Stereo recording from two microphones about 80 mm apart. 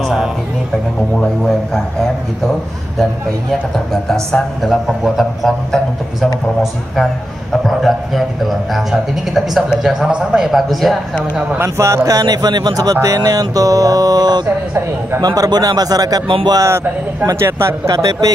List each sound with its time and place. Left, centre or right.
0.0 s a sound: centre
3.7 s a man's voice: centre
11.5 s speech: right
16.5 s speech: right
17.8 s speech: right